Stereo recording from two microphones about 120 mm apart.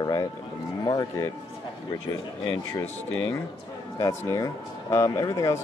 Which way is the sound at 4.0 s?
25° left (ahead or behind).